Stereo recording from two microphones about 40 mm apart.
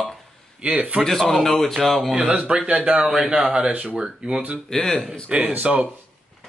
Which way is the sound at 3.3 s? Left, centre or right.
Right.